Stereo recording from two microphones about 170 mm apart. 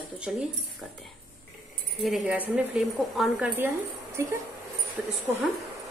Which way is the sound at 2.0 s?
5° right (ahead or behind).